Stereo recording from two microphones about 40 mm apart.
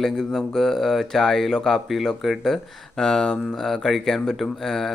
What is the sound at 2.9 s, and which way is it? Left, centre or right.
Speech, centre.